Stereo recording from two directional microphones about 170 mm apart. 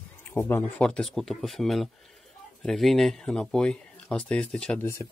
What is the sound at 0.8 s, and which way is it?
Speech, 5° left (ahead or behind).